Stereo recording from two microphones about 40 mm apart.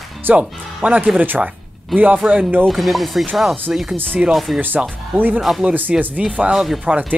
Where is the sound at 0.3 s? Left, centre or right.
Right.